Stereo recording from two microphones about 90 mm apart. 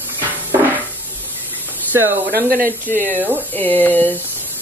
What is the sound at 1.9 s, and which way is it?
Speech, 20° right (ahead or behind).